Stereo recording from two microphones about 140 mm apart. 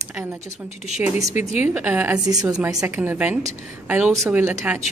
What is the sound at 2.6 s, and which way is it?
A woman's voice, 15° right (ahead or behind).